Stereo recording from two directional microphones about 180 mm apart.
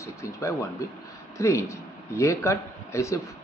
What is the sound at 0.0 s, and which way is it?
Speech, 15° left (ahead or behind).